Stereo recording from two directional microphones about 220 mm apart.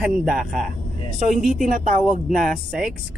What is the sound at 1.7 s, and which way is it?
Speech, 35° right (ahead or behind).